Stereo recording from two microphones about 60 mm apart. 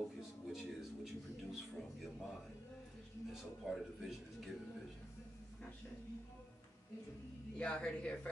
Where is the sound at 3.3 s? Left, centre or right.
Centre.